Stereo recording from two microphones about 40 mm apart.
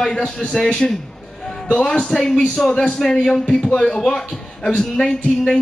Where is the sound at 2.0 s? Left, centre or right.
Centre.